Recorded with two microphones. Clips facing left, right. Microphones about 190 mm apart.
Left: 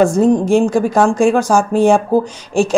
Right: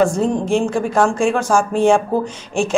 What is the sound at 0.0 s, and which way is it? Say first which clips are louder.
A woman's voice: left 5 dB; 40° left (ahead or behind).